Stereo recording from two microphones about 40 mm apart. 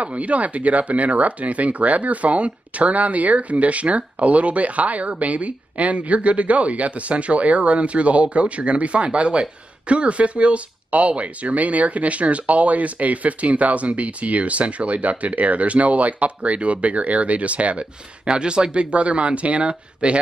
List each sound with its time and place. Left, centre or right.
0.0 s speech: right